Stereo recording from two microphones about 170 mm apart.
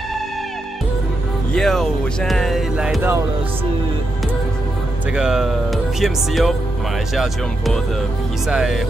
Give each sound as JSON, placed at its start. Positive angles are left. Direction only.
{"t": 1.5, "sound": "speech", "side_deg": 0}
{"t": 5.1, "sound": "speech", "side_deg": -5}